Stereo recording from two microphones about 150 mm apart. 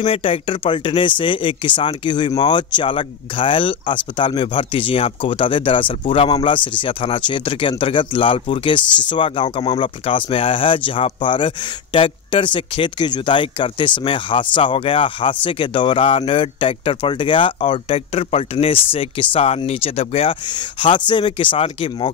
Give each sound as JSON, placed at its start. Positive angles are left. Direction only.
{"t": 0.0, "sound": "speech", "side_deg": 35}